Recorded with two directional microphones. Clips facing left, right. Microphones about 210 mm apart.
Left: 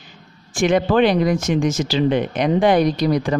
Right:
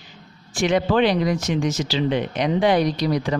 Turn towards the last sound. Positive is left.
turn(degrees=50)  # may be behind; listen again after turning